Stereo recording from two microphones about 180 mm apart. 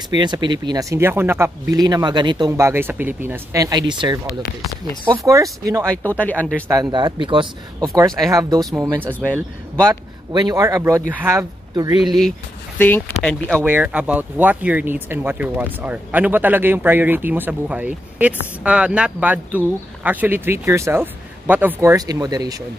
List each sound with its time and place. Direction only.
0.1 s speech: 25° right (ahead or behind)
6.0 s speech: 10° left (ahead or behind)
6.7 s speech: 20° right (ahead or behind)
9.2 s speech: 5° left (ahead or behind)
10.3 s speech: 20° right (ahead or behind)
12.7 s speech: 10° left (ahead or behind)
13.7 s speech: 10° right (ahead or behind)